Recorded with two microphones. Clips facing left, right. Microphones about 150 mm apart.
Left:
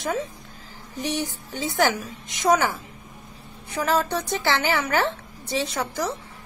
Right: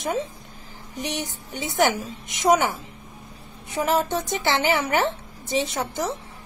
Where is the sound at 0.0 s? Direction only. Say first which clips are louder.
Right 1 dB; 20° right (ahead or behind).